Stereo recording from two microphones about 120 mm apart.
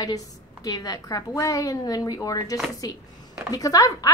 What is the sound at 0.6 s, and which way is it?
A woman's voice, 30° left (ahead or behind).